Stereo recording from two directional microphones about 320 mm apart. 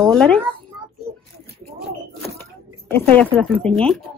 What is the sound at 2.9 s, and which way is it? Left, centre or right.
Speech, centre.